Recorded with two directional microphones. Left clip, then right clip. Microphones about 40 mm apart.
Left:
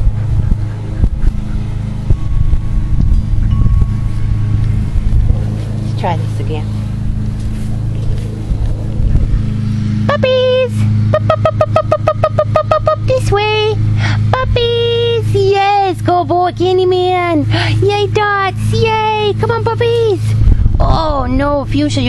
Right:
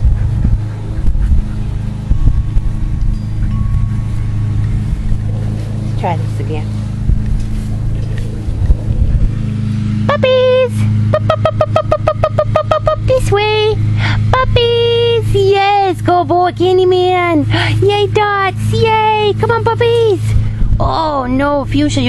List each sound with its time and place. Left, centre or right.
6.0 s speech: right
10.0 s vehicle: right
11.9 s a sound: right
20.8 s speech: right